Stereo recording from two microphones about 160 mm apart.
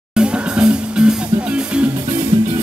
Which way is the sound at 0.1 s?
5° right (ahead or behind).